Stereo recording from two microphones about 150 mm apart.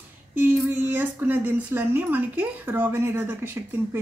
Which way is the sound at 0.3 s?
10° right (ahead or behind).